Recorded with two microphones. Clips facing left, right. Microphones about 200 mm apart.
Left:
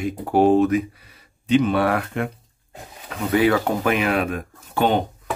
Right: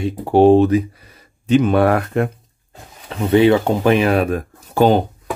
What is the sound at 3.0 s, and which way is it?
Speech, 25° right (ahead or behind).